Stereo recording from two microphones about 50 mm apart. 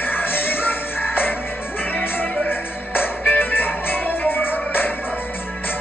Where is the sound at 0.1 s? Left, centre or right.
Left.